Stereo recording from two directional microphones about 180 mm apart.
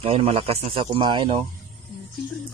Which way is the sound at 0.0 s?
30° right (ahead or behind).